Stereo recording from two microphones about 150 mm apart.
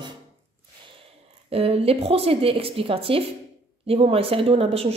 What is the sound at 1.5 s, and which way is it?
Speech, 40° right (ahead or behind).